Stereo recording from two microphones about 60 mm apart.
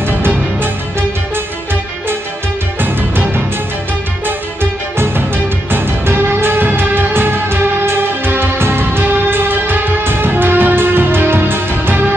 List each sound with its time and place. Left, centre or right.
2.8 s music: right
4.6 s music: right